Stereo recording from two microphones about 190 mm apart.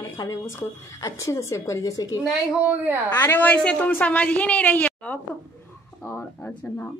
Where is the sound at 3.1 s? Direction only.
10° left (ahead or behind).